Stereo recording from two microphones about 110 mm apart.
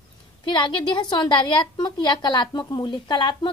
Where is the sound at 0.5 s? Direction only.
45° left (ahead or behind).